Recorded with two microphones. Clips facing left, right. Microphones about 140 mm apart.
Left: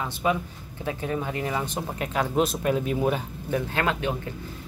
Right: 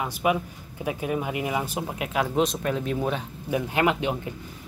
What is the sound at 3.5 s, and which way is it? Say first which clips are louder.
Speech: right 2 dB; 15° right (ahead or behind).